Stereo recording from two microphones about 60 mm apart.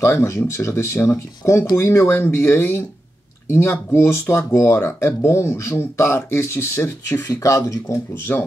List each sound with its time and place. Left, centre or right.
0.0 s speech: left
7.2 s speech: left
8.1 s speech: left